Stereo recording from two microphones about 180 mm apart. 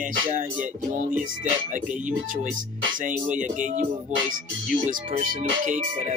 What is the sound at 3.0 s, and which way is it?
Speech, 45° right (ahead or behind).